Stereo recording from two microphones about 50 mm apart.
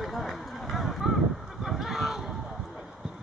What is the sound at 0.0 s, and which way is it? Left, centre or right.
Run, centre.